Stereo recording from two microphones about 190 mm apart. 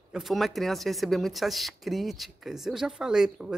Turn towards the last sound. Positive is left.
turn(degrees=-5)  # may be behind; listen again after turning